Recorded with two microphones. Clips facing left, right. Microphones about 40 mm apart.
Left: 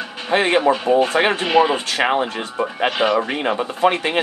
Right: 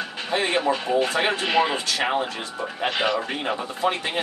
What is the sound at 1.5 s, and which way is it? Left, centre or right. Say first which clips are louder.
Speech: left 6 dB; centre.